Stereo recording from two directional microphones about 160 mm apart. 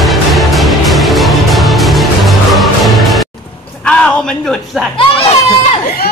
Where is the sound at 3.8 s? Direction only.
5° left (ahead or behind).